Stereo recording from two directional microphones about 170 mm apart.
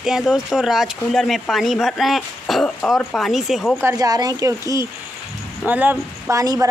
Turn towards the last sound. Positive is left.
turn(degrees=-20)  # may be behind; listen again after turning